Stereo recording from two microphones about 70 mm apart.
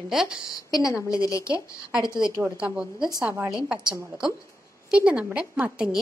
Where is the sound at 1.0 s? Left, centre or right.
Left.